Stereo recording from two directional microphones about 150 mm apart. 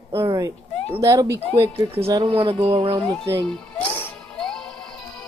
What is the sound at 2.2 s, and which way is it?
Music, 40° right (ahead or behind).